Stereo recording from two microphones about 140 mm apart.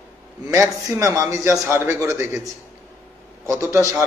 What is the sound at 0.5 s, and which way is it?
A man's voice, 25° right (ahead or behind).